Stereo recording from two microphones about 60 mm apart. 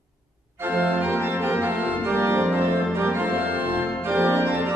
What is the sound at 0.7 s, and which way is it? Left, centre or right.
Organ, right.